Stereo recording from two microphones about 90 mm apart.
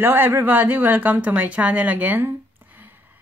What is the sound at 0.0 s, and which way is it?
A woman's voice, 25° right (ahead or behind).